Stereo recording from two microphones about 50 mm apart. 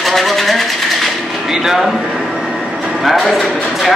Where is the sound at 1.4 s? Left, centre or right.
Centre.